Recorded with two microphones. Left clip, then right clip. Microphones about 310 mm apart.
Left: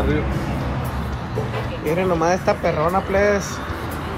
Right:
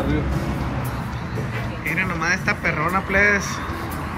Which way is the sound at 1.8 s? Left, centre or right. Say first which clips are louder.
Left 3 dB; centre.